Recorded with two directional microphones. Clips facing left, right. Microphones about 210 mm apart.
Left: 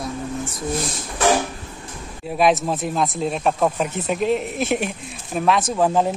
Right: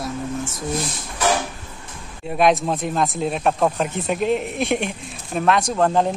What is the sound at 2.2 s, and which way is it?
Speech, centre (ahead or behind).